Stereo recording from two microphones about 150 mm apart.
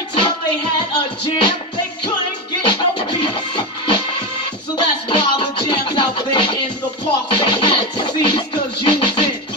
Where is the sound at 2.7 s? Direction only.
35° left (ahead or behind).